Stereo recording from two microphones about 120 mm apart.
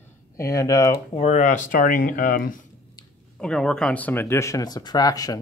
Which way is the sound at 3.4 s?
5° left (ahead or behind).